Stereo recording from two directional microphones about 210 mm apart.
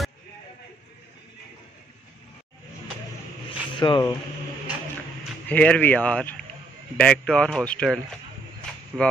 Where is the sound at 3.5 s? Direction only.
20° left (ahead or behind).